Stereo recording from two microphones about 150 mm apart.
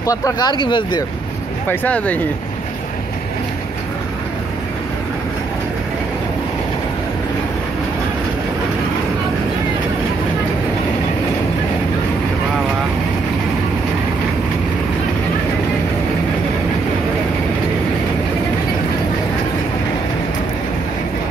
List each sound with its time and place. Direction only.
0.0 s speech: 20° left (ahead or behind)
1.7 s speech: 10° left (ahead or behind)